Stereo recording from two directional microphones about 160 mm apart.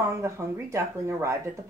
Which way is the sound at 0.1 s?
20° right (ahead or behind).